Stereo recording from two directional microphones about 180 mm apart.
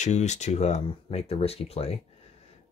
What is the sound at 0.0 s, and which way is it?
Speech, 40° left (ahead or behind).